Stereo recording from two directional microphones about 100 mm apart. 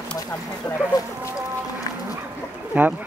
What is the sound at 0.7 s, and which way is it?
Speech, 10° left (ahead or behind).